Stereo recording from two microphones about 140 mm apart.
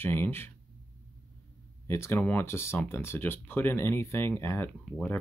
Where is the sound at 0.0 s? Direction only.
15° left (ahead or behind).